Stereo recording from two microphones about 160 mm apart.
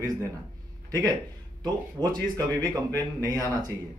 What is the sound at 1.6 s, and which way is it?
Speech, 25° right (ahead or behind).